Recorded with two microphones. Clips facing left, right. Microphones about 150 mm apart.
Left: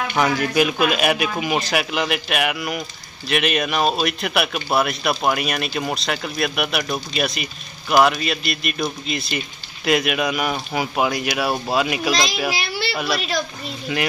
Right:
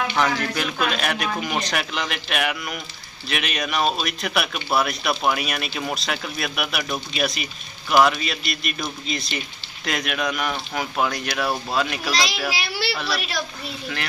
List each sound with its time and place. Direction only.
0.2 s a man's voice: 10° left (ahead or behind)
12.4 s a woman's voice: 5° right (ahead or behind)
12.9 s a man's voice: 15° left (ahead or behind)